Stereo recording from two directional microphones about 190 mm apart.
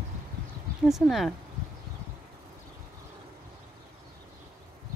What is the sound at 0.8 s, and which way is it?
Speech, centre (ahead or behind).